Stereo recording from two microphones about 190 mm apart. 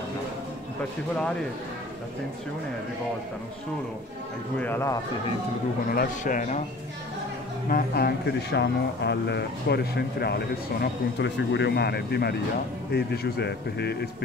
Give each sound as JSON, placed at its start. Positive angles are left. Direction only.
{"t": 4.6, "sound": "speech", "side_deg": 10}
{"t": 5.9, "sound": "speech", "side_deg": 45}
{"t": 7.7, "sound": "speech", "side_deg": 55}